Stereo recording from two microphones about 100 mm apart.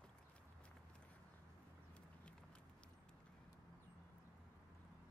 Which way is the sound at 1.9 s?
10° left (ahead or behind).